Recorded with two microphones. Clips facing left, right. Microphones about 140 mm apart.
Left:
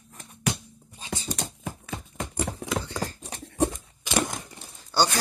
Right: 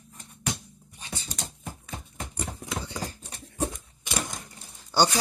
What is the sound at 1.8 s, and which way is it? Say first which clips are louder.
Clip-clop: left 4 dB; 90° left.